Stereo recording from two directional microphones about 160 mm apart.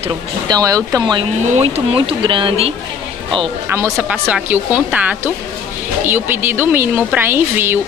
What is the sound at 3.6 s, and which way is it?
Speech, 15° right (ahead or behind).